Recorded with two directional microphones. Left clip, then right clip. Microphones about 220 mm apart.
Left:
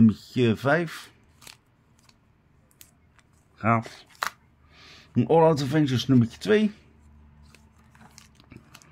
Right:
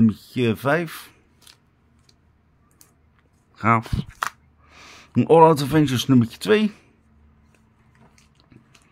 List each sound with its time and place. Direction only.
0.0 s speech: 5° right (ahead or behind)
3.5 s speech: 20° right (ahead or behind)